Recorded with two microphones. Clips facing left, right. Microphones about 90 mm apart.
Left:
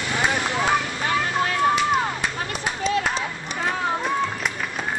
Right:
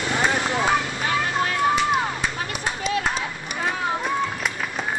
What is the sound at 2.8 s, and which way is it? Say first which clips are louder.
Run: left 2 dB; 10° right (ahead or behind).